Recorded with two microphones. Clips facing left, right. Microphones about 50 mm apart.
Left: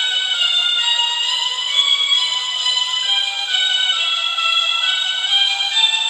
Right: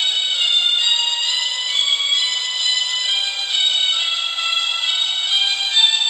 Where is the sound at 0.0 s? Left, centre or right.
Left.